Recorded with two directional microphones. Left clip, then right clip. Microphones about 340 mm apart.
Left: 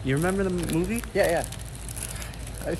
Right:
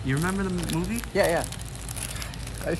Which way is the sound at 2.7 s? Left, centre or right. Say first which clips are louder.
Right 1 dB; right.